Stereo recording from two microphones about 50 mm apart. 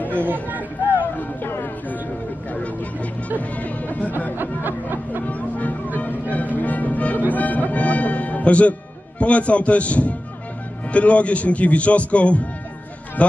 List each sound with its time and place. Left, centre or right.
0.1 s chatter: right
1.1 s music: left
4.4 s music: right
5.2 s music: left
9.2 s a man's voice: left